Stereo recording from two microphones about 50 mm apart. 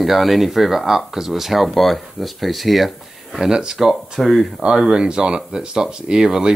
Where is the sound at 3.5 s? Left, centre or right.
Centre.